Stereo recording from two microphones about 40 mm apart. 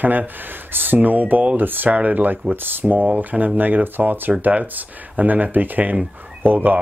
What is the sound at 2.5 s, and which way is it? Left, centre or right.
Speech, right.